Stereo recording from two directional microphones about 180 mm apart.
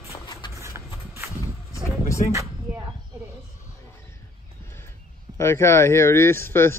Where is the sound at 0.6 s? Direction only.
15° right (ahead or behind).